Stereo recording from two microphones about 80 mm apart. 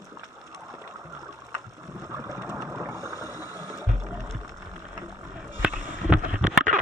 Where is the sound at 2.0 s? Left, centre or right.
Right.